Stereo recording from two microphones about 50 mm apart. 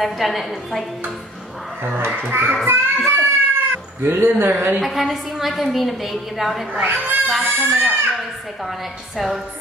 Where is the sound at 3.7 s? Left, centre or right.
Right.